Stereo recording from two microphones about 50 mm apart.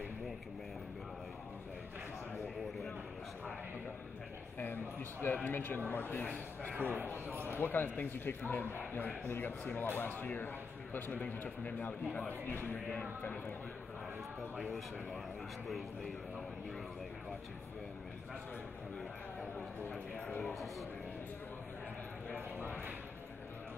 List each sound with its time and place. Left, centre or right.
5.2 s speech: left
6.7 s speech: right
7.6 s speech: left
22.3 s clip-clop: right